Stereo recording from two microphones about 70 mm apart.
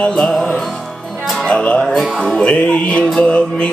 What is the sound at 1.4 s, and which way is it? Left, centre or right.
Music, centre.